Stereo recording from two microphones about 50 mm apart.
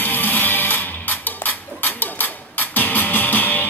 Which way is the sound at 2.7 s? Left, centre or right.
Left.